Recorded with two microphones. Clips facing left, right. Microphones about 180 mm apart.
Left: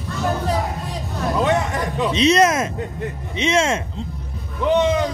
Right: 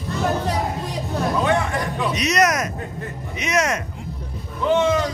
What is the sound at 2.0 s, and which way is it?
Speech, 25° left (ahead or behind).